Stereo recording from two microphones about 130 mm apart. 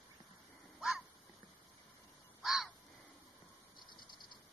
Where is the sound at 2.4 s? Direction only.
Centre (ahead or behind).